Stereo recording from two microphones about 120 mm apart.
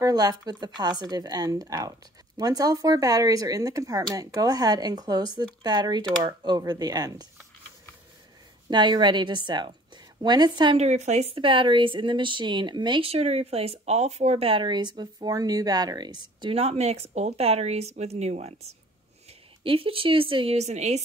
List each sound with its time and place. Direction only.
0.0 s speech: 35° right (ahead or behind)
8.6 s speech: 40° right (ahead or behind)
10.8 s speech: 70° right (ahead or behind)
11.3 s speech: 45° right (ahead or behind)
16.5 s speech: 60° right (ahead or behind)
19.6 s speech: 50° right (ahead or behind)
20.5 s speech: 70° right (ahead or behind)